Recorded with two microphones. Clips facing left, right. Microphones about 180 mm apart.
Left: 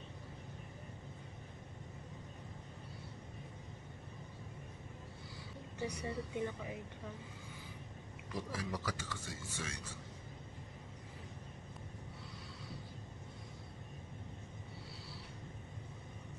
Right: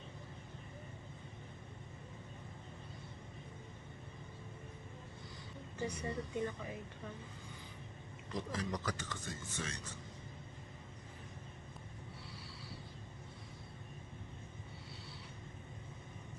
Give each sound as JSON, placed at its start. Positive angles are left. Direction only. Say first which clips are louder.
{"t": 5.8, "sound": "speech", "louder": "even", "side_deg": 15}
{"t": 8.3, "sound": "speech", "louder": "right 1 dB", "side_deg": 10}